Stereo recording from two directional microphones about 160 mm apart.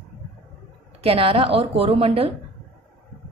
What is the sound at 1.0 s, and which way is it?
A woman's voice, 35° right (ahead or behind).